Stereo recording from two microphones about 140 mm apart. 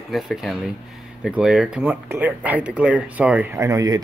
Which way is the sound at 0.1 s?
Centre (ahead or behind).